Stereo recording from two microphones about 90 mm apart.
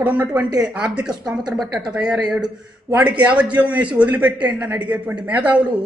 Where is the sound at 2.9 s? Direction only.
15° right (ahead or behind).